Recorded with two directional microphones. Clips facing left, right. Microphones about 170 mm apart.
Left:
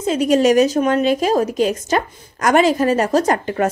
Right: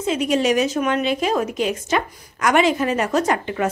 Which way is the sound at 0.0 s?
40° left (ahead or behind).